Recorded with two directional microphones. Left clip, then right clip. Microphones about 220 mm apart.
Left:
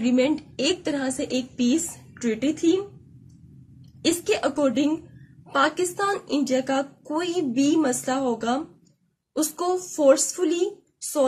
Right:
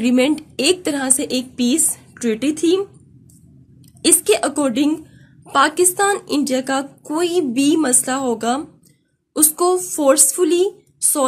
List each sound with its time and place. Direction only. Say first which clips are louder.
0.0 s a woman's voice: right 5 dB; 50° right (ahead or behind)
4.0 s a woman's voice: right 7 dB; 45° right (ahead or behind)